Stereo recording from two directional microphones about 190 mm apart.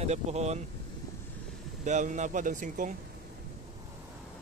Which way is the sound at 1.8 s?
40° right (ahead or behind).